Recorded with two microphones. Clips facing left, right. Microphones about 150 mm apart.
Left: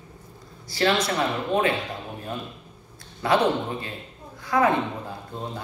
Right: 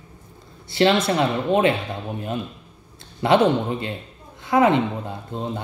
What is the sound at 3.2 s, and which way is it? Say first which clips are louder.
Speech: right 4 dB; 25° right (ahead or behind).